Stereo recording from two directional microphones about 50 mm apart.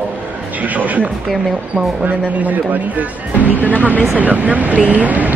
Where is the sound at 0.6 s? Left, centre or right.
Right.